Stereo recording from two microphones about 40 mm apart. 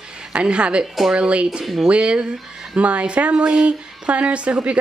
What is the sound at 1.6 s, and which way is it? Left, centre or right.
Speech, centre.